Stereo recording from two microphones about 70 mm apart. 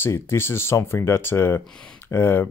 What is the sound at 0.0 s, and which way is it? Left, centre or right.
Speech, left.